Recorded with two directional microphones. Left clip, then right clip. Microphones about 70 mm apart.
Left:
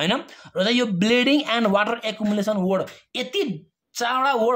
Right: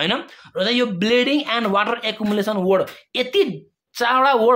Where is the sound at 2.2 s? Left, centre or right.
Centre.